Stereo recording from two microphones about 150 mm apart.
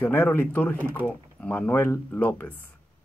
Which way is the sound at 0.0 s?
15° left (ahead or behind).